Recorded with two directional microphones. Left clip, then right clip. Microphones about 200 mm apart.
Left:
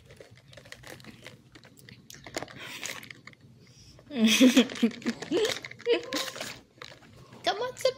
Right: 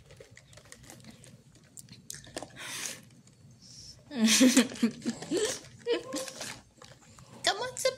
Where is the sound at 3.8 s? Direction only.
10° left (ahead or behind).